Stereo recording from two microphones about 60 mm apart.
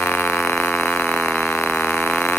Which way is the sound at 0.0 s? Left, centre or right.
Left.